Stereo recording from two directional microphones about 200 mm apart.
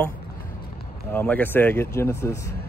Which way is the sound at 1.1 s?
10° left (ahead or behind).